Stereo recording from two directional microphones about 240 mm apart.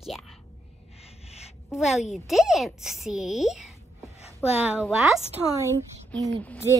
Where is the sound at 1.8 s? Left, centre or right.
Centre.